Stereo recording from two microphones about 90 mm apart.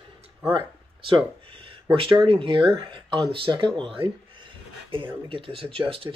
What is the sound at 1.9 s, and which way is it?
Speech, 75° right (ahead or behind).